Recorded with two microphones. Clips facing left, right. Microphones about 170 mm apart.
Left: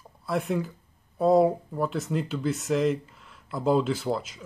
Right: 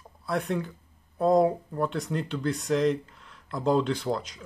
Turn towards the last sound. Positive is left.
turn(degrees=5)  # may be behind; listen again after turning